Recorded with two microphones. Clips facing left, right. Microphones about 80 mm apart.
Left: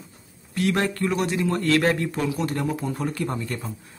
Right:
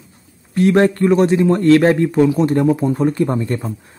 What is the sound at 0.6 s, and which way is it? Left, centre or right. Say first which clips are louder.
A man's voice: right 10 dB; right.